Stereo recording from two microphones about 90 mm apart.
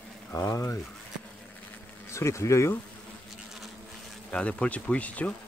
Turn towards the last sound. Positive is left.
turn(degrees=15)  # may be behind; listen again after turning